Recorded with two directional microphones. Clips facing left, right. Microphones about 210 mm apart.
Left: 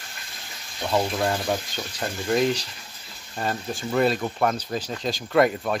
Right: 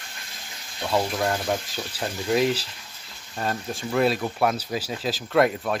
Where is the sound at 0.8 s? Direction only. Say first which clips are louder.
Left 1 dB; centre (ahead or behind).